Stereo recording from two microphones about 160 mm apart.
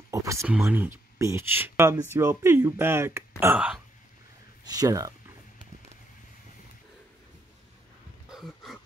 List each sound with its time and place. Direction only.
0.1 s speech: 20° right (ahead or behind)
4.6 s speech: 20° right (ahead or behind)
8.3 s throat clearing: centre (ahead or behind)